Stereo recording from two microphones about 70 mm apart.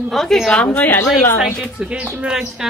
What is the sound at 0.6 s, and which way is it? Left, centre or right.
Speech, left.